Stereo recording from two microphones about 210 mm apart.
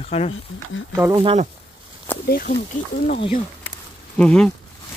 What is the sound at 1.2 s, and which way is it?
Speech, 25° right (ahead or behind).